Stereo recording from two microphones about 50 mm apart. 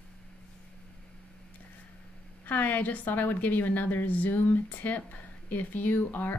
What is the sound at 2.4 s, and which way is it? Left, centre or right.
Speech, left.